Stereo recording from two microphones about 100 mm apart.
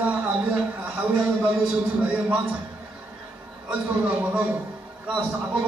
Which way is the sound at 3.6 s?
15° right (ahead or behind).